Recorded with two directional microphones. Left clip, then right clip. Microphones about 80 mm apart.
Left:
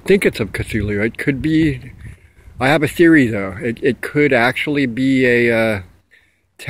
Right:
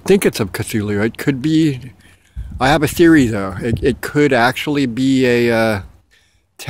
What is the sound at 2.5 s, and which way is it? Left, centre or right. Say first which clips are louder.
Speech: right 1 dB; right.